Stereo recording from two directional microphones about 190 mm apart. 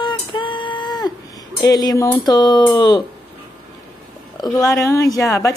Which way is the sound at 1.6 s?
20° left (ahead or behind).